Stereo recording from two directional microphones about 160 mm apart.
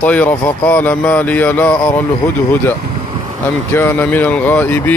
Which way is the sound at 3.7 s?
15° left (ahead or behind).